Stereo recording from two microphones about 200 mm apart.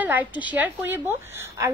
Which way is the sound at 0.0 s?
10° right (ahead or behind).